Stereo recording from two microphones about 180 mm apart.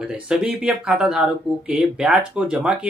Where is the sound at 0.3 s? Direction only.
5° right (ahead or behind).